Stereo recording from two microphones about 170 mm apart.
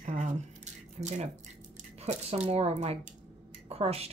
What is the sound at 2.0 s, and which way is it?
Speech, 40° right (ahead or behind).